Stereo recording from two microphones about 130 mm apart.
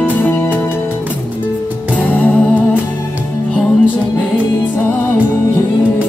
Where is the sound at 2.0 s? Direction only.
10° left (ahead or behind).